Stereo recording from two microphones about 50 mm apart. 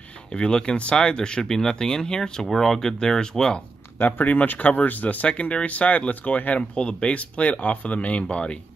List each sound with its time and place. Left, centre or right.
0.3 s speech: centre
2.4 s speech: centre
4.0 s speech: left
6.7 s speech: centre